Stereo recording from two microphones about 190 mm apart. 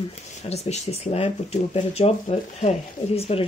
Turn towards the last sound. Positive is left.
turn(degrees=30)  # may be behind; listen again after turning